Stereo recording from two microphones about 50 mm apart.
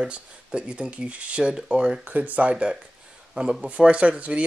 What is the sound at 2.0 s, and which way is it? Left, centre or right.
Speech, right.